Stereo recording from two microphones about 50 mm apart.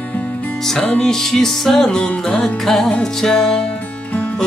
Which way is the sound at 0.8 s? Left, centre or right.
Centre.